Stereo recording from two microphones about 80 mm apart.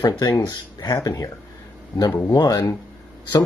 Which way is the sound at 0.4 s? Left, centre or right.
Left.